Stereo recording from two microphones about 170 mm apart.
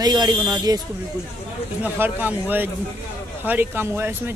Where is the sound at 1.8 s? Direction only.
10° right (ahead or behind).